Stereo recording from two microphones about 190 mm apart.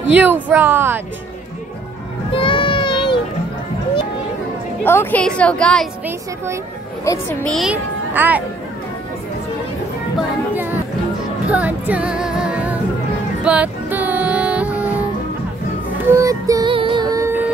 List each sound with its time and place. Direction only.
0.1 s speech: 10° right (ahead or behind)
2.3 s child singing: 25° left (ahead or behind)
4.8 s a woman's voice: 10° left (ahead or behind)
6.0 s speech: 15° right (ahead or behind)
7.1 s speech: 15° left (ahead or behind)
7.4 s a child's voice: centre (ahead or behind)
10.5 s music: 10° right (ahead or behind)
16.1 s child singing: 15° right (ahead or behind)